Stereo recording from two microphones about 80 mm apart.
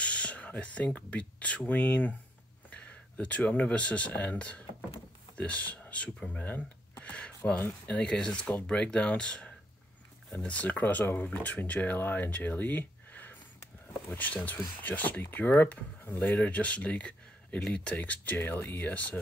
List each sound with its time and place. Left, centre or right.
0.0 s speech: centre